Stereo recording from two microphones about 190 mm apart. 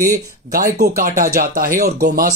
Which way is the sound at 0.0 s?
50° right (ahead or behind).